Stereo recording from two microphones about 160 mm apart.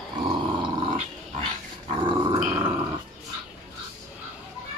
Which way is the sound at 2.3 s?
50° right (ahead or behind).